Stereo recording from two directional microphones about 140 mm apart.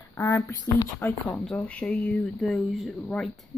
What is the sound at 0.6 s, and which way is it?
Speech, 25° left (ahead or behind).